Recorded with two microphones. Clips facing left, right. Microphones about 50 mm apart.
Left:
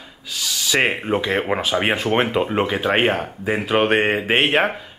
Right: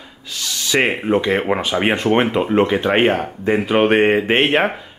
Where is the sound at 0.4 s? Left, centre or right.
Centre.